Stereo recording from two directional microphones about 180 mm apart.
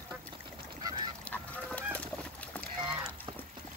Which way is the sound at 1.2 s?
10° left (ahead or behind).